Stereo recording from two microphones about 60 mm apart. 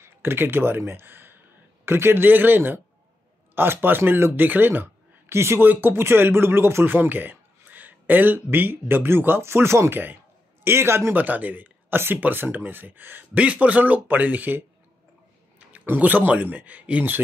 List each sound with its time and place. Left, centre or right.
0.0 s a man's voice: right
11.1 s speech: right
15.7 s speech: right